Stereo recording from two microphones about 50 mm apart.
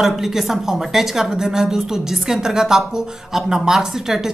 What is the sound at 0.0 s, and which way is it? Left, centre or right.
A woman's voice, centre.